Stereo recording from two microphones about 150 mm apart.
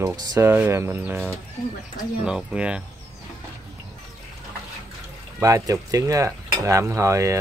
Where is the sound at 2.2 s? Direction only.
5° right (ahead or behind).